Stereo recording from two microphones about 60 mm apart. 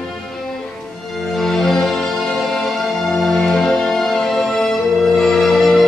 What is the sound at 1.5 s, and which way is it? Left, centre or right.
Music, centre.